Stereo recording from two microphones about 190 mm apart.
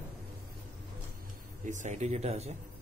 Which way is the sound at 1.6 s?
40° right (ahead or behind).